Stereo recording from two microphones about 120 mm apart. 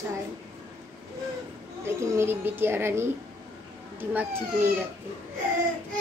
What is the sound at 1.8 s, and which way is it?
A woman's voice, 20° right (ahead or behind).